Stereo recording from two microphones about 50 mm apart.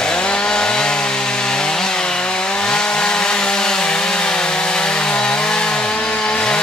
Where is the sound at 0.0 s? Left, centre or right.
Centre.